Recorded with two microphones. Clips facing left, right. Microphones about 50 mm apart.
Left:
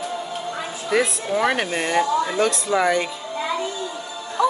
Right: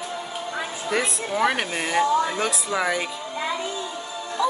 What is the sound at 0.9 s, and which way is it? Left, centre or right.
Speech, centre.